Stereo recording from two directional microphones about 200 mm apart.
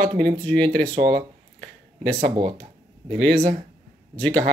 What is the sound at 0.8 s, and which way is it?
Speech, 20° right (ahead or behind).